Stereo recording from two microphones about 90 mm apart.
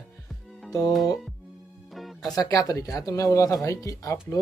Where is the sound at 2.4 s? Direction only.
40° left (ahead or behind).